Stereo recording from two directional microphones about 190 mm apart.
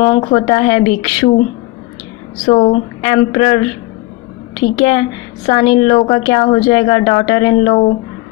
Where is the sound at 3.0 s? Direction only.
25° left (ahead or behind).